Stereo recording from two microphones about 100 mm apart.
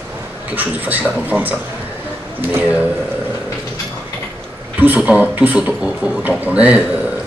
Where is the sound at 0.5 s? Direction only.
15° right (ahead or behind).